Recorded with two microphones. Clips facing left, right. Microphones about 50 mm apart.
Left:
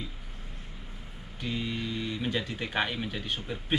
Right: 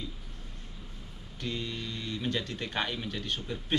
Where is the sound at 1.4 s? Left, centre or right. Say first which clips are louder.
Left 3 dB; centre.